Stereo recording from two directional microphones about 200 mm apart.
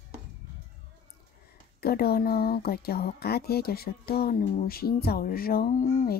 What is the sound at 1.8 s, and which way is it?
Speech, 50° left (ahead or behind).